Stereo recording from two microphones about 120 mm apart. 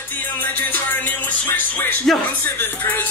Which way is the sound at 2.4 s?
15° left (ahead or behind).